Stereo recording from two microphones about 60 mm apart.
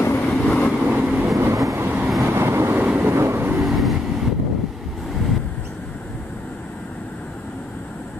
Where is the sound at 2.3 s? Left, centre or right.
Right.